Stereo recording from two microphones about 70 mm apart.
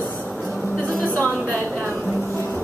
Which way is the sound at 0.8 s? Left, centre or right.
Centre.